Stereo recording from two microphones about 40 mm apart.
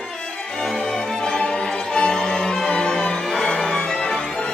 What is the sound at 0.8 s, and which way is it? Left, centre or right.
Music, left.